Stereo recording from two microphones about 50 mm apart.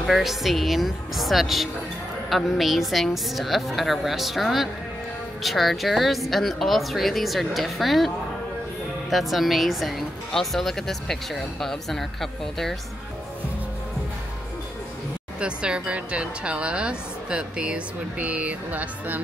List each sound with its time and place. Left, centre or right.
0.0 s a woman's voice: centre
9.1 s a woman's voice: centre
15.4 s speech: centre; by 19.2 s right